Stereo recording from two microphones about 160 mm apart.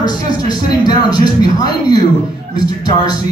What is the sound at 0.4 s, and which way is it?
Speech, 25° left (ahead or behind).